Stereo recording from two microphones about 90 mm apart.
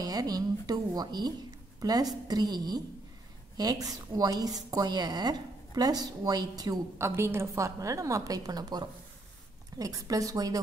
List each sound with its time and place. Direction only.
0.0 s a woman's voice: 45° right (ahead or behind)
7.0 s a woman's voice: 30° right (ahead or behind)